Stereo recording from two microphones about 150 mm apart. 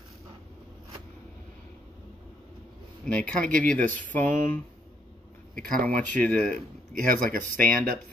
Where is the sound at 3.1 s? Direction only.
5° left (ahead or behind).